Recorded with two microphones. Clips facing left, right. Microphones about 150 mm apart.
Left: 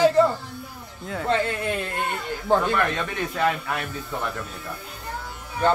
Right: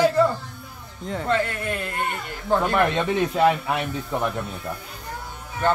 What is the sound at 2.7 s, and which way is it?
Speech, 25° right (ahead or behind).